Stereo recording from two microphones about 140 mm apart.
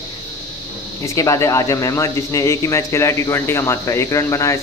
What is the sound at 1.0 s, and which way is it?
Speech, 20° left (ahead or behind).